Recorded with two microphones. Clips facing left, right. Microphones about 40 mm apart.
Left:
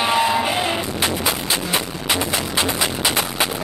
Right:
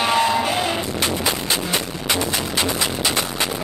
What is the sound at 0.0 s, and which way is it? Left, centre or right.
Music, centre.